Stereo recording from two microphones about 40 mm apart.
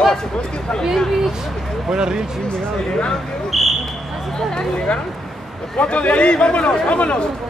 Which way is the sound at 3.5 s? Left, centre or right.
Centre.